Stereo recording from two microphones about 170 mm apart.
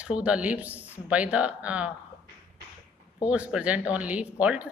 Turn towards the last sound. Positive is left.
turn(degrees=-5)  # may be behind; listen again after turning